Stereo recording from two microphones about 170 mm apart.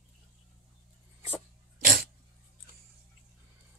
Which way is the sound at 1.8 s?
60° right (ahead or behind).